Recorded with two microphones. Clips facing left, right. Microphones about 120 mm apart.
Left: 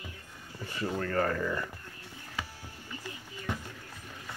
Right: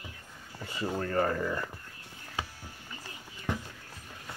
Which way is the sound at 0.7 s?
15° right (ahead or behind).